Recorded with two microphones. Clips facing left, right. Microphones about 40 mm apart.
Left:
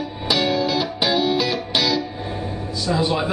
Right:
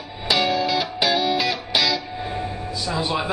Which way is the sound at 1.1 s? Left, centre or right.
Centre.